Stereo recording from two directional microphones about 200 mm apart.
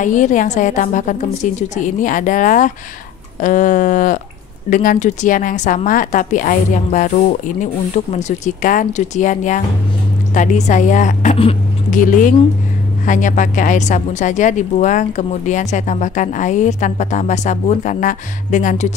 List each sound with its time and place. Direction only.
0.0 s a woman's voice: 40° left (ahead or behind)